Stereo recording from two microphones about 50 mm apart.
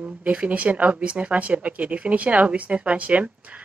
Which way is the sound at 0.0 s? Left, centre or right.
Right.